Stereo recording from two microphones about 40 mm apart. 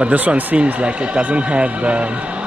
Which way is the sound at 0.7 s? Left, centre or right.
Right.